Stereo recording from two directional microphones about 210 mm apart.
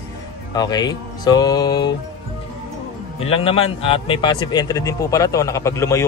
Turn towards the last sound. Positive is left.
turn(degrees=15)  # may be behind; listen again after turning